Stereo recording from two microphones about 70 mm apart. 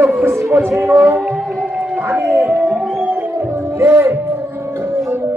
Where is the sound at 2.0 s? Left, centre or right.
Right.